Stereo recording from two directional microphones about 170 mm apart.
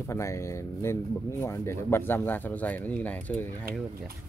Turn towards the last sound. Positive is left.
turn(degrees=10)  # may be behind; listen again after turning